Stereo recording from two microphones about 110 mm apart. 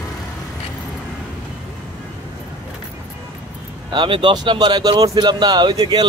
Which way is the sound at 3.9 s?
50° right (ahead or behind).